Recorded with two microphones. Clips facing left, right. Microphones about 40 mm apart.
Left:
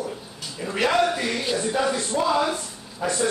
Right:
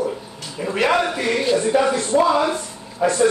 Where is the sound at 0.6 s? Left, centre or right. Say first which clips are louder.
Right 3 dB; centre.